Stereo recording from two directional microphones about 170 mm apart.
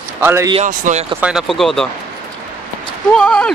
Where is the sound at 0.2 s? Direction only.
15° right (ahead or behind).